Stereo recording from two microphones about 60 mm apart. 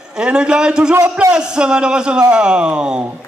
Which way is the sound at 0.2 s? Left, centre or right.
Centre.